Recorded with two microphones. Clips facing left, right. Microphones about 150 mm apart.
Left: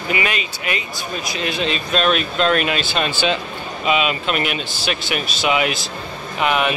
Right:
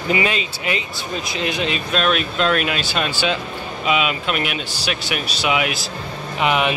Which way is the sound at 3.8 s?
5° right (ahead or behind).